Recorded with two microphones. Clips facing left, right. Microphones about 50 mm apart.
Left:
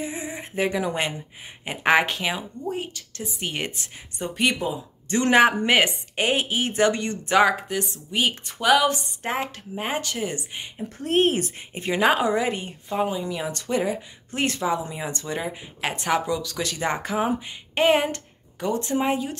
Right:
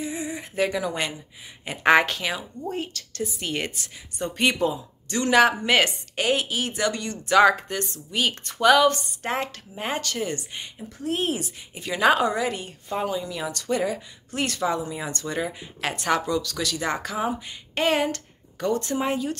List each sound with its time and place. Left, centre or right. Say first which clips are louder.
0.0 s a sound: right 1 dB; left
1.8 s speech: right 1 dB; centre
4.2 s speech: right 1 dB; centre
5.0 s a woman's voice: left 1 dB; left
5.7 s a woman's voice: left 1 dB; centre
7.4 s speech: right 2 dB; centre
11.0 s speech: left 5 dB; left
12.0 s a woman's voice: right 1 dB; centre
16.6 s a woman's voice: left 1 dB; left